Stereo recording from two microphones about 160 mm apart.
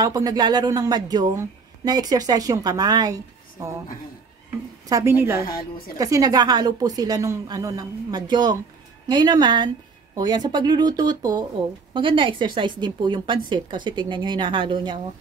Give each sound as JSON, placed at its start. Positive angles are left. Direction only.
{"t": 0.0, "sound": "a woman's voice", "side_deg": -25}
{"t": 4.8, "sound": "a woman's voice", "side_deg": -20}